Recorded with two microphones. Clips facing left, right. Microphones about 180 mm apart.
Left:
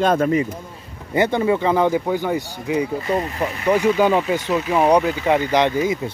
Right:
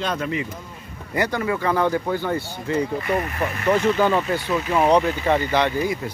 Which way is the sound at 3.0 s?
25° left (ahead or behind).